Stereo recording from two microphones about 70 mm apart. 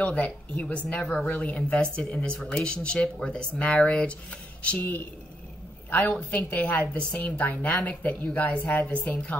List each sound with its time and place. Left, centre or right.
0.0 s a woman's voice: centre